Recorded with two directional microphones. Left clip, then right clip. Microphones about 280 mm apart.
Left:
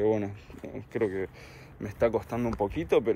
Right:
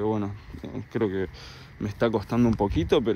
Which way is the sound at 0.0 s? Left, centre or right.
Centre.